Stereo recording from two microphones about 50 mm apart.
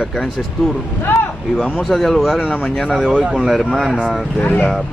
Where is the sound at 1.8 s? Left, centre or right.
Centre.